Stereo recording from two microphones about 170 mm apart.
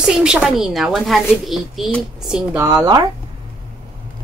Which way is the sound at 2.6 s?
20° right (ahead or behind).